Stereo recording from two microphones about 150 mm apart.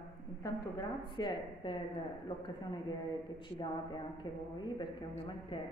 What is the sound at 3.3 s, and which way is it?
A man's voice, 30° left (ahead or behind).